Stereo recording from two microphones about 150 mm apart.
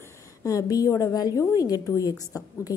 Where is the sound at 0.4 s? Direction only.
20° left (ahead or behind).